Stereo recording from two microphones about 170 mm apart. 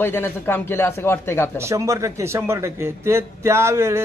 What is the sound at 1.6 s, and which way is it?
A man's voice, 15° right (ahead or behind).